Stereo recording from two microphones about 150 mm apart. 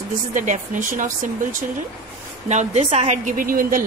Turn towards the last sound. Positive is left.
turn(degrees=-70)  # may be behind; listen again after turning